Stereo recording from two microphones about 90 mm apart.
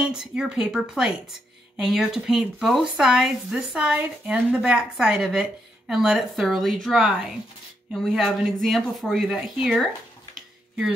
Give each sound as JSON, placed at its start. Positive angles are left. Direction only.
{"t": 0.0, "sound": "speech", "side_deg": -10}